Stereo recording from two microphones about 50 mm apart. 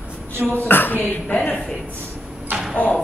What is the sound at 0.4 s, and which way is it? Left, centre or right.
Speech, left.